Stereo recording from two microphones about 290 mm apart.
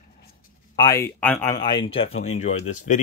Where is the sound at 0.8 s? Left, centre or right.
Centre.